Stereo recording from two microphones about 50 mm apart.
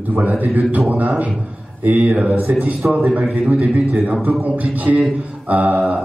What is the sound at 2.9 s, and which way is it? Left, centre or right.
A man's voice, right.